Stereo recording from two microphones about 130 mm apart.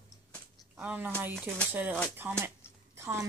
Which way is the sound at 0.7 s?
10° right (ahead or behind).